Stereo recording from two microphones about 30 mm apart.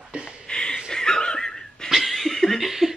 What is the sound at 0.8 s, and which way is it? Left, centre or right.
Wheeze, centre.